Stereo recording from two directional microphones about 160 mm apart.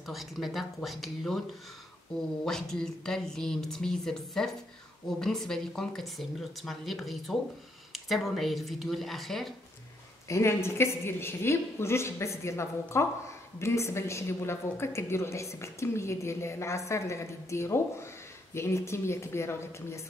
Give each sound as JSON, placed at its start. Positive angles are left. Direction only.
{"t": 0.0, "sound": "speech", "side_deg": 0}
{"t": 2.4, "sound": "speech", "side_deg": 5}
{"t": 10.2, "sound": "a woman's voice", "side_deg": 15}